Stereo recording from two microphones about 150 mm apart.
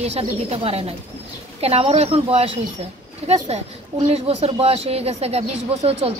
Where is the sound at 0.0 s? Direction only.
45° right (ahead or behind).